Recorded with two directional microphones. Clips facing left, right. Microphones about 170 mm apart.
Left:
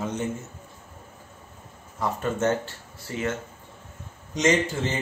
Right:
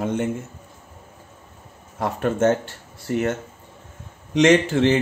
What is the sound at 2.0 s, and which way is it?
Speech, 55° right (ahead or behind).